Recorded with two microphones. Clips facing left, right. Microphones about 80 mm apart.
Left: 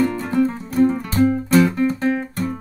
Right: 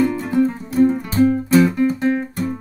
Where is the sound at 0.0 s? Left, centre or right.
Centre.